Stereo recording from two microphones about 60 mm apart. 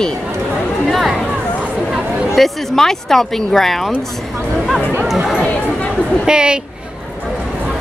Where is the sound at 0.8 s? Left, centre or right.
Centre.